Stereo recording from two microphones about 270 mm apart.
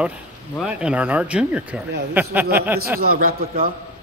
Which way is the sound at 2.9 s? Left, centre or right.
Right.